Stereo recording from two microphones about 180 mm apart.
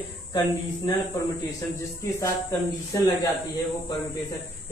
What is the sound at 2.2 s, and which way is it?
Speech, 15° left (ahead or behind).